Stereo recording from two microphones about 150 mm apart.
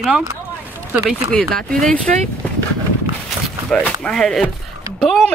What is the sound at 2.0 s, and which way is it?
Speech, 55° right (ahead or behind).